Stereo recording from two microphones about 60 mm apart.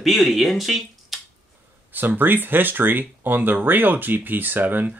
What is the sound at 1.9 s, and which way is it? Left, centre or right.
Speech, right.